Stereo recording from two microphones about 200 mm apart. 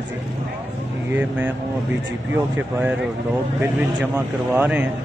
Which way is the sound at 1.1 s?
10° right (ahead or behind).